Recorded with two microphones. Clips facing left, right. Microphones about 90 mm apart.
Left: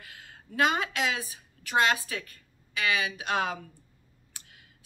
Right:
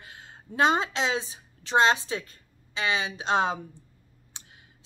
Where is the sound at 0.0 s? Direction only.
25° right (ahead or behind).